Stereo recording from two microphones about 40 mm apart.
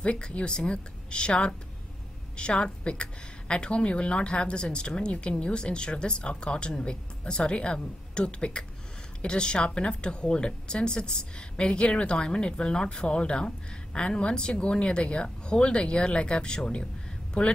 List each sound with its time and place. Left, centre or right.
0.0 s speech: left